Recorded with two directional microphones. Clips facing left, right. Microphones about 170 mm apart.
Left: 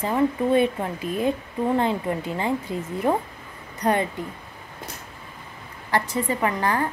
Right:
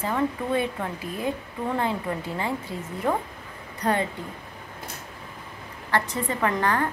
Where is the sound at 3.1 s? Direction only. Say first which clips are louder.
Left 3 dB; 15° left (ahead or behind).